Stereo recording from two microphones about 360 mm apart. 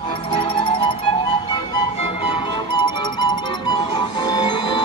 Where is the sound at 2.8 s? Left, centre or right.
Centre.